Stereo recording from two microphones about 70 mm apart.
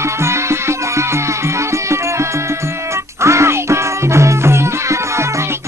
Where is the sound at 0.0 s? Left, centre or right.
Right.